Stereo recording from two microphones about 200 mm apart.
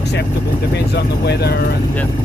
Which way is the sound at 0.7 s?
55° left (ahead or behind).